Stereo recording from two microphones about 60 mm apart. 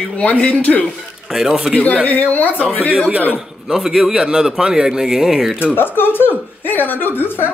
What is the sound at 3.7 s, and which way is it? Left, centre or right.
A man's voice, centre.